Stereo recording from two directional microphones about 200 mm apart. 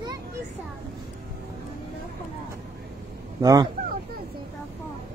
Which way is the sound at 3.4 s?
20° right (ahead or behind).